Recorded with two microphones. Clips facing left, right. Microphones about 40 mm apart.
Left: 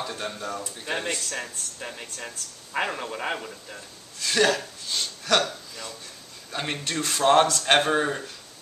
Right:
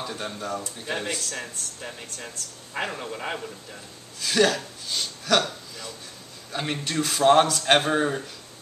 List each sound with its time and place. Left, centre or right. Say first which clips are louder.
0.0 s speech: even; centre
4.2 s speech: right 1 dB; centre